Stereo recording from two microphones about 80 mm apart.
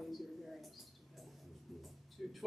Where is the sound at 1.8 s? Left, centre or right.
Centre.